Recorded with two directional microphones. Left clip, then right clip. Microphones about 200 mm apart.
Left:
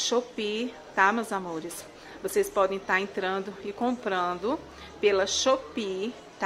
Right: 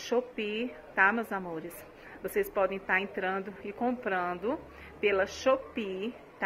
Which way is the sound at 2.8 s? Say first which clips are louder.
Left 3 dB; 15° left (ahead or behind).